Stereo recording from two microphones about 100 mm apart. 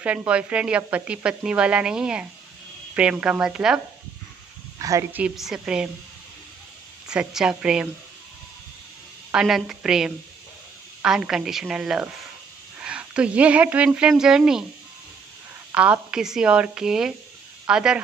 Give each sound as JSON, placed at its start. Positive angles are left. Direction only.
{"t": 0.0, "sound": "speech", "side_deg": -15}
{"t": 4.7, "sound": "speech", "side_deg": -35}
{"t": 5.3, "sound": "a woman's voice", "side_deg": -5}
{"t": 7.1, "sound": "speech", "side_deg": -10}
{"t": 9.3, "sound": "a woman's voice", "side_deg": -5}
{"t": 15.7, "sound": "speech", "side_deg": -10}